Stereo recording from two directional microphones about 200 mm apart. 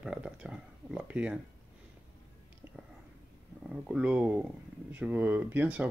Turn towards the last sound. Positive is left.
turn(degrees=-5)  # may be behind; listen again after turning